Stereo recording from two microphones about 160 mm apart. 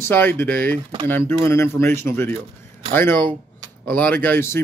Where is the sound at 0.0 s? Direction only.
15° left (ahead or behind).